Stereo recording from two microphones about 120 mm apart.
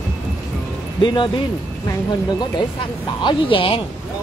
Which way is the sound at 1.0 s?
40° left (ahead or behind).